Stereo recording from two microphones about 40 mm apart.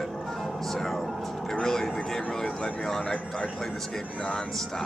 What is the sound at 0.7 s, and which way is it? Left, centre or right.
Music, centre.